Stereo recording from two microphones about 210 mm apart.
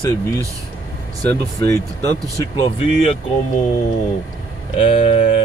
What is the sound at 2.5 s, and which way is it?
Speech, 30° left (ahead or behind).